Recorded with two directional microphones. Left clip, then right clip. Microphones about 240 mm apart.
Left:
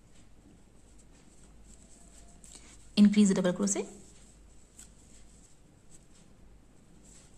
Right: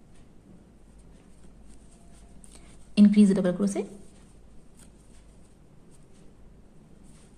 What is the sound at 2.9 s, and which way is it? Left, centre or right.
Speech, centre.